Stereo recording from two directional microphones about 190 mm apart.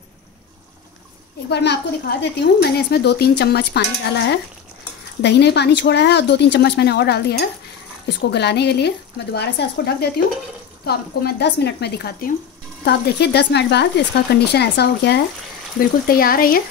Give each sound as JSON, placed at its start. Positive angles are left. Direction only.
{"t": 1.5, "sound": "a woman's voice", "side_deg": 60}
{"t": 15.8, "sound": "speech", "side_deg": 50}